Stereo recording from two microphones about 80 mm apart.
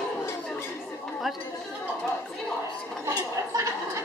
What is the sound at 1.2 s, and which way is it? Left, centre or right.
Speech, centre.